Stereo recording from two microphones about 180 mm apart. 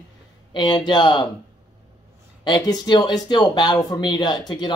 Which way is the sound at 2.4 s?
20° left (ahead or behind).